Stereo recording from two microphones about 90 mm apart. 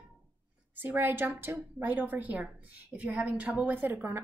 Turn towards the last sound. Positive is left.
turn(degrees=-25)  # may be behind; listen again after turning